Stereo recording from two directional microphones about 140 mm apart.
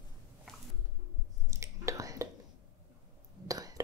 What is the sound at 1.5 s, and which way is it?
Whispering, 20° right (ahead or behind).